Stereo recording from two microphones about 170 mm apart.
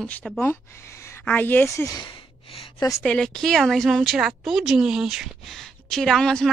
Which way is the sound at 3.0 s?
5° left (ahead or behind).